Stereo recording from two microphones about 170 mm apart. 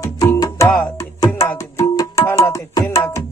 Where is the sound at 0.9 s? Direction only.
20° left (ahead or behind).